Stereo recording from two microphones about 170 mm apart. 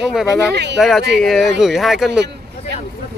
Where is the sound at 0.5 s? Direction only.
90° right.